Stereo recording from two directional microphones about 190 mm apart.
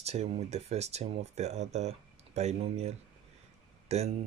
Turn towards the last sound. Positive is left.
turn(degrees=-35)  # may be behind; listen again after turning